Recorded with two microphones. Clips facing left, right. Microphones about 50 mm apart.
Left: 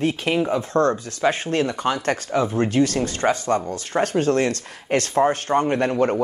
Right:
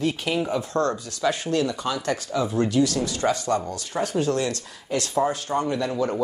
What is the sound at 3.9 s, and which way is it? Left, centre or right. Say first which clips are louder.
Speech: left 4 dB; left.